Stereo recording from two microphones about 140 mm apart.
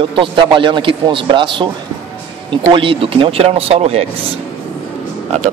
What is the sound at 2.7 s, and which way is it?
Speech, 40° right (ahead or behind).